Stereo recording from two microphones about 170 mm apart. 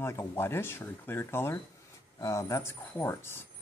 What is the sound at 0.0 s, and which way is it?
Speech, 15° left (ahead or behind).